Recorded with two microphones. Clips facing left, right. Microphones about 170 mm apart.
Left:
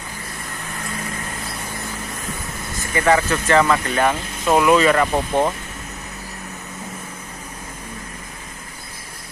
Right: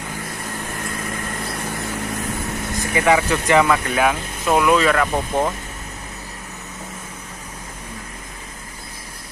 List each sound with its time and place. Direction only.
2.9 s speech: 15° right (ahead or behind); by 5.5 s 5° left (ahead or behind)